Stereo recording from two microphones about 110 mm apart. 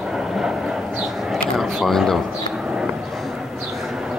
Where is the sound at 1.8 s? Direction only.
Centre (ahead or behind).